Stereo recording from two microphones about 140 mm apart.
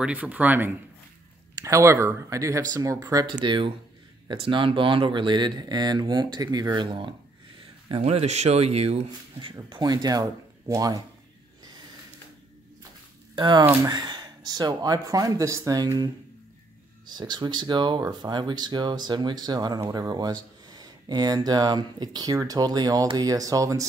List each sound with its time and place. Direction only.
0.0 s speech: 10° right (ahead or behind); by 7.2 s 35° right (ahead or behind)
8.0 s speech: 50° right (ahead or behind)
9.4 s speech: 35° right (ahead or behind)
13.4 s speech: 30° right (ahead or behind)
17.1 s speech: 30° right (ahead or behind)